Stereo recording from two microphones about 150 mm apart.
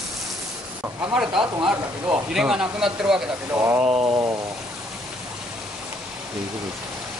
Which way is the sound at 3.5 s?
20° right (ahead or behind).